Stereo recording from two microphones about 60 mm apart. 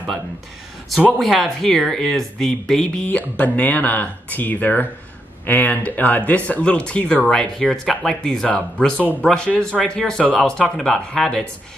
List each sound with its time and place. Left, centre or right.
1.1 s speech: centre
3.1 s speech: left
7.3 s speech: centre